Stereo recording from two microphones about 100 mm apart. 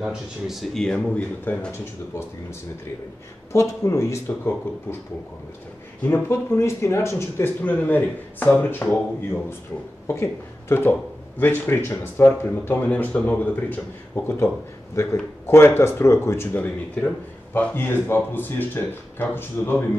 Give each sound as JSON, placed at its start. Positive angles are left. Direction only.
{"t": 0.0, "sound": "speech", "side_deg": -5}
{"t": 3.5, "sound": "speech", "side_deg": 30}
{"t": 6.0, "sound": "speech", "side_deg": 25}
{"t": 10.0, "sound": "speech", "side_deg": 25}
{"t": 16.5, "sound": "speech", "side_deg": 15}